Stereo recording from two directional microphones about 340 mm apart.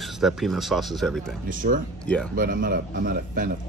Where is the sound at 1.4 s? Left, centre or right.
Right.